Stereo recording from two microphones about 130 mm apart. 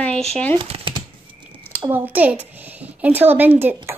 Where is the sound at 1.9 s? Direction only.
15° right (ahead or behind).